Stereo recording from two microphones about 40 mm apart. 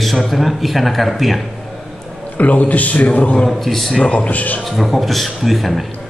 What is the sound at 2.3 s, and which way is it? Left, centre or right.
A man's voice, left.